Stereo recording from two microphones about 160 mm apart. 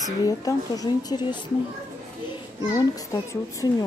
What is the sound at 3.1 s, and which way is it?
Speech, 20° left (ahead or behind).